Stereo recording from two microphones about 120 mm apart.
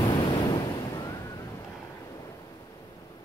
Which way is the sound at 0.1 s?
40° left (ahead or behind).